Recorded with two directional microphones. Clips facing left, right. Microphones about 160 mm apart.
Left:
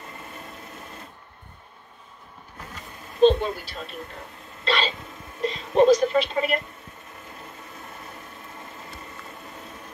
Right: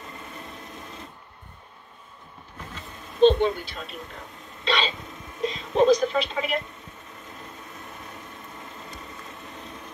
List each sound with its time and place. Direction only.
3.2 s speech: 5° left (ahead or behind)
4.6 s a sound: centre (ahead or behind)
5.4 s speech: centre (ahead or behind)